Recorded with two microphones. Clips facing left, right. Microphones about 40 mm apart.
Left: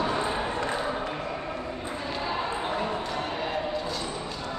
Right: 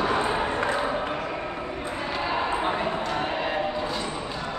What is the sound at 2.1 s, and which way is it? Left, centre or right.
Basketball bounce, right.